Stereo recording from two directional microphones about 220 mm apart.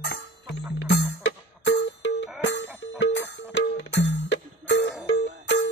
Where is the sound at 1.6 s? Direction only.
50° left (ahead or behind).